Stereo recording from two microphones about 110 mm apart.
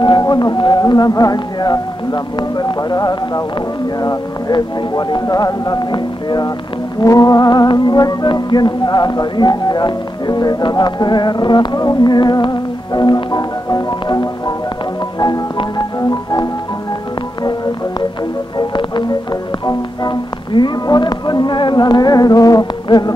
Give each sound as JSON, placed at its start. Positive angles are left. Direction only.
{"t": 0.0, "sound": "music", "side_deg": 45}
{"t": 16.0, "sound": "music", "side_deg": 35}
{"t": 18.6, "sound": "music", "side_deg": 45}